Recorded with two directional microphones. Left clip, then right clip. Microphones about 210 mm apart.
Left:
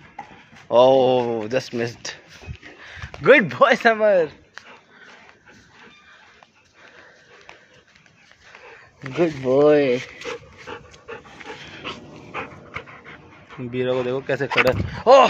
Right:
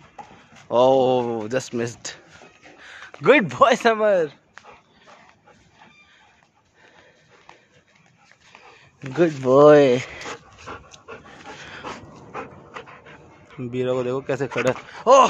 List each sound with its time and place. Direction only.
0.7 s speech: 15° right (ahead or behind)
2.8 s a sound: 20° right (ahead or behind)
3.2 s speech: 20° right (ahead or behind)
9.2 s speech: 40° right (ahead or behind)
10.7 s dog: 35° right (ahead or behind)
13.6 s speech: 20° right (ahead or behind)